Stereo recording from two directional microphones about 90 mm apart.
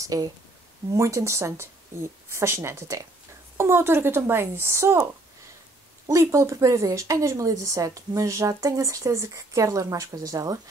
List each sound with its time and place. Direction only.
0.0 s speech: 40° right (ahead or behind)
6.0 s speech: 35° right (ahead or behind)